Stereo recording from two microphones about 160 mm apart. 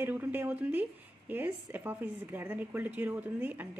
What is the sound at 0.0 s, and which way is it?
Speech, 10° right (ahead or behind).